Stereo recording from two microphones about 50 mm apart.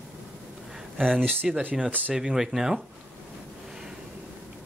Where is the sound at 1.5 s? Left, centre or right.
Centre.